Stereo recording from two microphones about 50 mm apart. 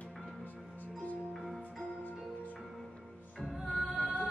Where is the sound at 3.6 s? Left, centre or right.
Centre.